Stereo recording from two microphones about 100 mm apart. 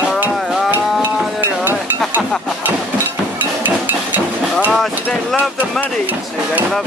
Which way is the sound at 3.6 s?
15° right (ahead or behind).